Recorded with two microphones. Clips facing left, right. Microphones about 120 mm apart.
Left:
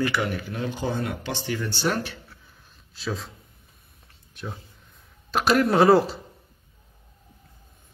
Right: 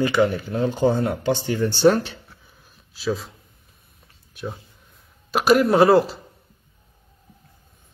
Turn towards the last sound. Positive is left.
turn(degrees=0)  # may be behind; listen again after turning